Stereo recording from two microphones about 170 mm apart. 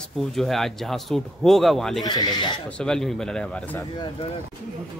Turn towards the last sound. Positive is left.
turn(degrees=25)  # may be behind; listen again after turning